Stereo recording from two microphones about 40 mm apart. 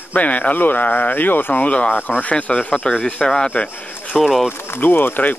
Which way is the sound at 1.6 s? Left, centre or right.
Left.